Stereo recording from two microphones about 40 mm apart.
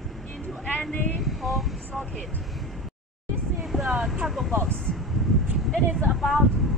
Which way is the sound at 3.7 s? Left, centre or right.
Centre.